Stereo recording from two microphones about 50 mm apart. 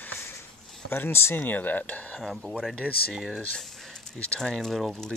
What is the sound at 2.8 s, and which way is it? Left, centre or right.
Speech, centre.